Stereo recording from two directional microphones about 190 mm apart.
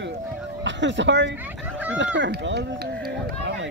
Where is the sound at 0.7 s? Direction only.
70° right (ahead or behind).